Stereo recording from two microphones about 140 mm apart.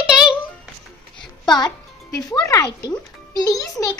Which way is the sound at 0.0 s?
5° right (ahead or behind).